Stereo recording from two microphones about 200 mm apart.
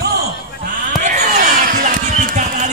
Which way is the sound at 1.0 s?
35° right (ahead or behind).